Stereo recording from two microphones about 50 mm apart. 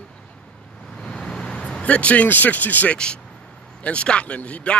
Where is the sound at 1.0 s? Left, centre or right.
Centre; by 2.9 s left.